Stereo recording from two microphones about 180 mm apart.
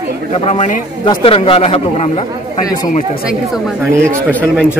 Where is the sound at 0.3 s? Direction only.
35° left (ahead or behind).